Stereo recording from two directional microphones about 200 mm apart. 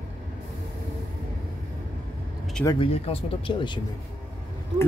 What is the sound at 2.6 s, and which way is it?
Speech, 25° left (ahead or behind).